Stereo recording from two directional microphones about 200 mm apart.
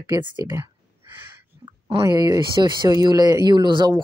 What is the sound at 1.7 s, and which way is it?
Speech, 15° right (ahead or behind).